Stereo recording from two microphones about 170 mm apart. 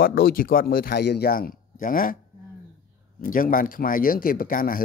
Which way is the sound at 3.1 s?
55° left (ahead or behind).